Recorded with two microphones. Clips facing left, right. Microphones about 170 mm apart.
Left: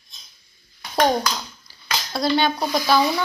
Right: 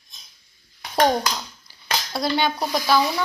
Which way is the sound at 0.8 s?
15° right (ahead or behind).